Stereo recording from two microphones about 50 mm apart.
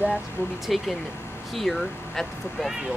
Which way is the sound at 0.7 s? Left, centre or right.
Centre.